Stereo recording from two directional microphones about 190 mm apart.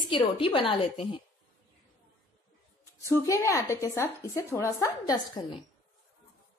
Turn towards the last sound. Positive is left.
turn(degrees=20)  # may be behind; listen again after turning